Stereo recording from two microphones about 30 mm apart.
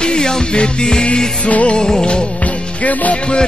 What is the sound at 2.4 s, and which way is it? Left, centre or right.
Music, left.